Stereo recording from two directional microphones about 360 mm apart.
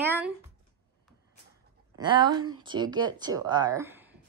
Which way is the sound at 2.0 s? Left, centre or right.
Centre.